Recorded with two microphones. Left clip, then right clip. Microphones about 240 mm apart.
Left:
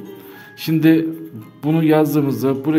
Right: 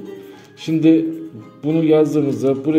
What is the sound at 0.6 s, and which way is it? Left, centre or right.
A man's voice, left.